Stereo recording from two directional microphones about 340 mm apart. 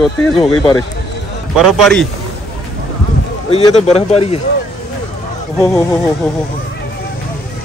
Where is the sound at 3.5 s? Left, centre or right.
Centre.